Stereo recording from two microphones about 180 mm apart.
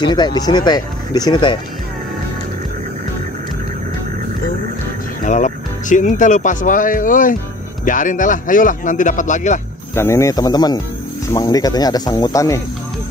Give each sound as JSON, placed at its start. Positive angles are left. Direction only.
{"t": 0.0, "sound": "speech", "side_deg": 25}
{"t": 5.2, "sound": "speech", "side_deg": 45}
{"t": 9.9, "sound": "speech", "side_deg": 15}